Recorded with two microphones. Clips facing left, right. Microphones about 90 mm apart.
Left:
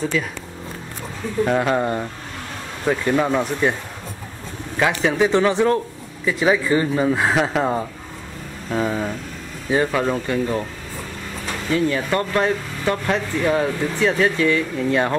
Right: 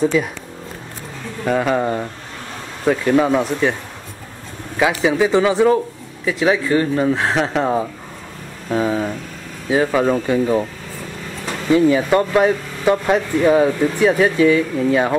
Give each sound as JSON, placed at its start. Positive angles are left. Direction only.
{"t": 0.0, "sound": "speech", "side_deg": -15}
{"t": 1.4, "sound": "speech", "side_deg": 0}
{"t": 4.7, "sound": "speech", "side_deg": -5}
{"t": 11.7, "sound": "speech", "side_deg": -15}